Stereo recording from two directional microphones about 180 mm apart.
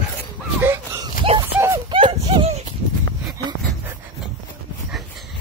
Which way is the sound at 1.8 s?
25° right (ahead or behind).